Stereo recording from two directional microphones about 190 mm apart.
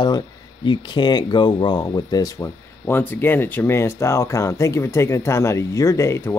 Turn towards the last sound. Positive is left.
turn(degrees=15)  # may be behind; listen again after turning